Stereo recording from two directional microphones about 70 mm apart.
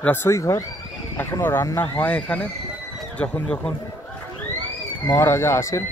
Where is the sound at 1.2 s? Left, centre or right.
Left.